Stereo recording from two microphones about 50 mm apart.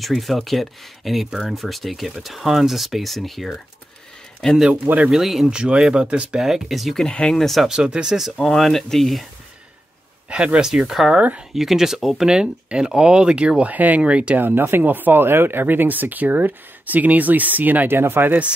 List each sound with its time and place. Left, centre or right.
0.0 s speech: centre
5.1 s speech: centre
6.4 s speech: centre
7.1 s speech: centre
7.6 s speech: centre
8.4 s speech: centre
10.3 s speech: centre
11.1 s speech: right
11.5 s speech: centre
12.4 s speech: centre
13.7 s speech: right
14.4 s speech: right
17.9 s speech: right